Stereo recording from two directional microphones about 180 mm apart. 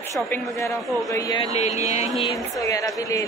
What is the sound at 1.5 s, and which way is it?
Speech, 40° left (ahead or behind).